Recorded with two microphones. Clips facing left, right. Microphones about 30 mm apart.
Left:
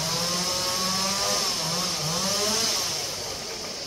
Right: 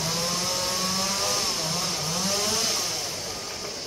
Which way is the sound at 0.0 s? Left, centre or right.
Centre.